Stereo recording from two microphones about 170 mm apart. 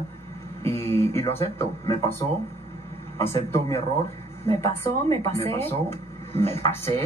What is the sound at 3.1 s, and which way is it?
Speech, 15° left (ahead or behind).